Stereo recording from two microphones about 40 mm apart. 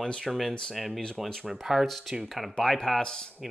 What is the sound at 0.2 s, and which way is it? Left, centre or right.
Speech, centre.